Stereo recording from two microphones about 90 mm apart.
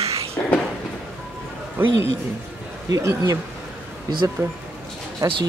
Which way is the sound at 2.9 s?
35° right (ahead or behind).